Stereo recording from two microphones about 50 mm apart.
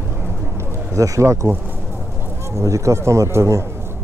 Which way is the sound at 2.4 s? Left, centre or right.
Right.